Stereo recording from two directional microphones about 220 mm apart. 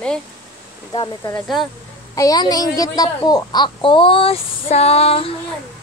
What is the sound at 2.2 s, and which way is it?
A woman's voice, 15° left (ahead or behind).